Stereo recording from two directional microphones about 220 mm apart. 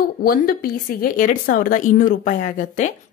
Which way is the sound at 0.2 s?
40° left (ahead or behind).